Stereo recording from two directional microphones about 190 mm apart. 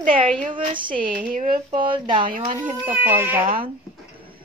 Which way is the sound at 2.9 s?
10° right (ahead or behind).